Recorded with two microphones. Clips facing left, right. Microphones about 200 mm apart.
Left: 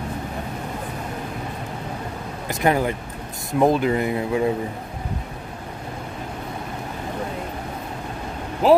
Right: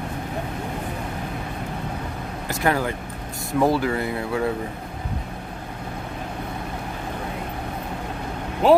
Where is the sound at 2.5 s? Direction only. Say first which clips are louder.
Left 3 dB; 20° left (ahead or behind).